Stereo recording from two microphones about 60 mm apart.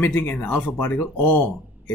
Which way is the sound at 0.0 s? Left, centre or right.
Left.